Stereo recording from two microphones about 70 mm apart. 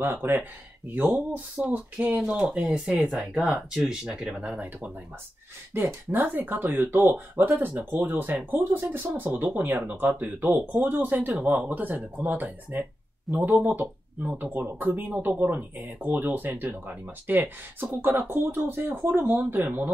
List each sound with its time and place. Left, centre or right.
0.0 s speech: right
2.9 s speech: centre
5.8 s speech: right